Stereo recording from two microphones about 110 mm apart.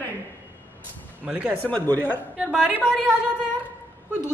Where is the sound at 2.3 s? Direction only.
10° right (ahead or behind).